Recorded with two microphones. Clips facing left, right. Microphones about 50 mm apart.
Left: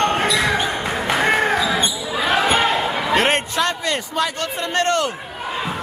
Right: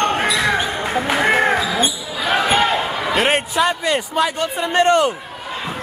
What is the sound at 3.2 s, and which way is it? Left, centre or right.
A man's voice, centre.